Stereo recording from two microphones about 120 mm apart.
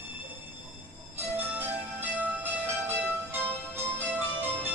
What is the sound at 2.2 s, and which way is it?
Music, 15° right (ahead or behind).